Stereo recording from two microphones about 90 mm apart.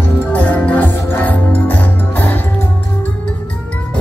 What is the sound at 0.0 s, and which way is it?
Music, 20° left (ahead or behind).